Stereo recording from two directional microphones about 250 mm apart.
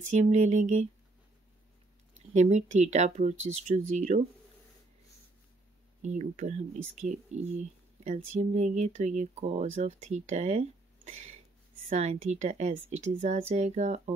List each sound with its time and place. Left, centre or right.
0.0 s speech: right
2.3 s speech: right
6.0 s speech: right